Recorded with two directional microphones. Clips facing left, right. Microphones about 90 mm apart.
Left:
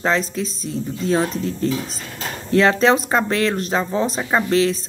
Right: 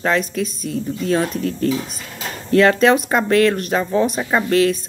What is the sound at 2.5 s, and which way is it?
Speech, 30° left (ahead or behind).